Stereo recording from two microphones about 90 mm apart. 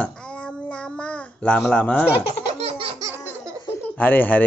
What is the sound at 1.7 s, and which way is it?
Speech, 15° left (ahead or behind).